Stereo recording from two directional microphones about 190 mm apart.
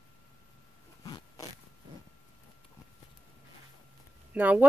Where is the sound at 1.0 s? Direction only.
20° left (ahead or behind).